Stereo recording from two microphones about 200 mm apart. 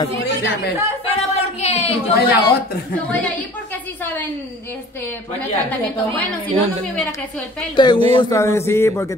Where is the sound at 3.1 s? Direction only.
10° left (ahead or behind).